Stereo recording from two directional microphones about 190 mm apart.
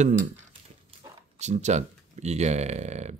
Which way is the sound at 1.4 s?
35° right (ahead or behind).